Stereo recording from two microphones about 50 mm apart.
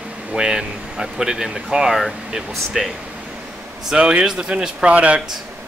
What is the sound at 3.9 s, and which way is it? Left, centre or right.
Speech, centre.